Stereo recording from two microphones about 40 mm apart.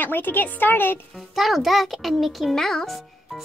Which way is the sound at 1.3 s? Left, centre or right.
Centre.